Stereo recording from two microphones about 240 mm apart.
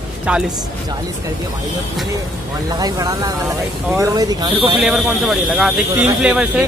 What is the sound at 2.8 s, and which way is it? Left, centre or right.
Speech, centre.